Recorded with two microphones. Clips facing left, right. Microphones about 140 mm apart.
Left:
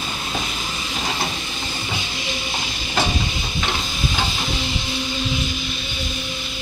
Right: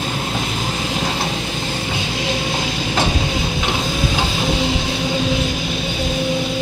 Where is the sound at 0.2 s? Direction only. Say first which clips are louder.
Right 5 dB; 60° right (ahead or behind); by 2.9 s 85° right.